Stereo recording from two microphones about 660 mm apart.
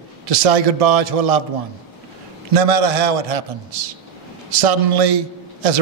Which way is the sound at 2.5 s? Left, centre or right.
Right.